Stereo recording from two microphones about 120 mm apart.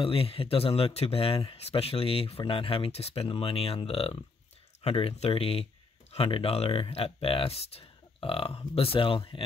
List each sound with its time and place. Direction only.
0.0 s speech: 50° left (ahead or behind)